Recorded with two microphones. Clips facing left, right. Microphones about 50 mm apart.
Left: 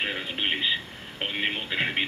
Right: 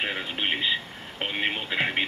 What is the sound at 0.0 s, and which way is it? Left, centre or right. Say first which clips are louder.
Speech: even; centre.